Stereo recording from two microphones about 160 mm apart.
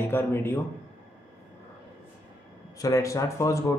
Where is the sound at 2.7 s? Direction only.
20° left (ahead or behind).